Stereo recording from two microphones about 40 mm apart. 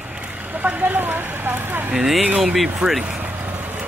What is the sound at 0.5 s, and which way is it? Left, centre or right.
Vehicle, right.